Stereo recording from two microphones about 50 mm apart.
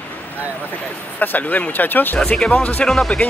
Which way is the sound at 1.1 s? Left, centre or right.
Left.